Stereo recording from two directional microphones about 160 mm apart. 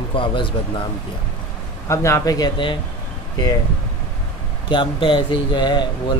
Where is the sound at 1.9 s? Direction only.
20° left (ahead or behind).